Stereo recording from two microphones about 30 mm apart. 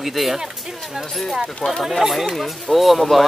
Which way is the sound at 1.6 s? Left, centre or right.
Left.